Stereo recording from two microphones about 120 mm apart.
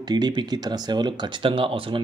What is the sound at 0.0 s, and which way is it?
Speech, 35° right (ahead or behind).